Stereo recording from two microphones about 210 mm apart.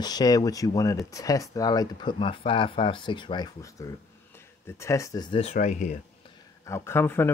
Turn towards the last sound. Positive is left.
turn(degrees=10)  # may be behind; listen again after turning